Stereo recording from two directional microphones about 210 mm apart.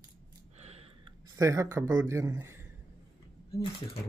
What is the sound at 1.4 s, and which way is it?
A man's voice, 15° right (ahead or behind).